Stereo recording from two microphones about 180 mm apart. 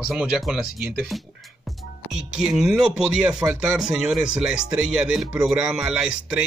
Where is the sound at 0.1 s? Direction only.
5° right (ahead or behind).